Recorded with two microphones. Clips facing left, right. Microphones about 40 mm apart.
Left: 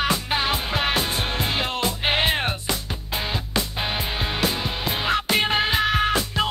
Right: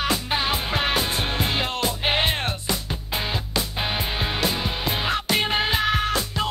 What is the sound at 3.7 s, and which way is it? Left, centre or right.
Music, centre.